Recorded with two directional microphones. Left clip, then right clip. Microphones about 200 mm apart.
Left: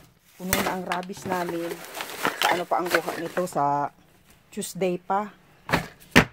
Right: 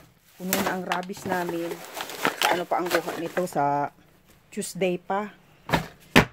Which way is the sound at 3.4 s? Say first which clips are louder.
Left 1 dB; 5° right (ahead or behind).